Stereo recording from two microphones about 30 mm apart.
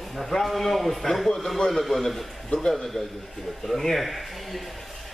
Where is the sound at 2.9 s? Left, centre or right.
Centre.